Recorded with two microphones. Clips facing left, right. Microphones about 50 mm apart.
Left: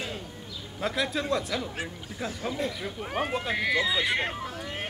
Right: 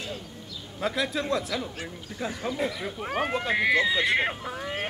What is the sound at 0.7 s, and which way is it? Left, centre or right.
Speech, centre.